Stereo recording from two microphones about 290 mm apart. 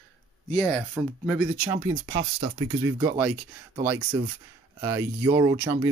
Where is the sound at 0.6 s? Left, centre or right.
Centre.